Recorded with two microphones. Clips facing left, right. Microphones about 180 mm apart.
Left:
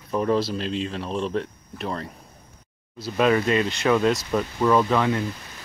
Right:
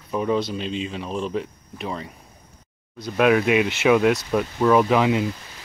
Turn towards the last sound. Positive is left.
turn(degrees=-15)  # may be behind; listen again after turning